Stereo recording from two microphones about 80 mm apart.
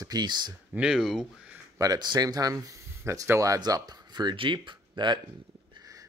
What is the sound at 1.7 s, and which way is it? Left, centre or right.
Speech, right.